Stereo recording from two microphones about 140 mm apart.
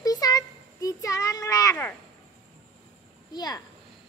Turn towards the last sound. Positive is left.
turn(degrees=30)  # may be behind; listen again after turning